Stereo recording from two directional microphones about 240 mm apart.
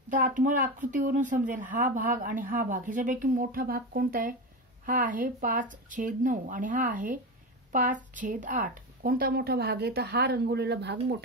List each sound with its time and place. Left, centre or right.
0.1 s a woman's voice: right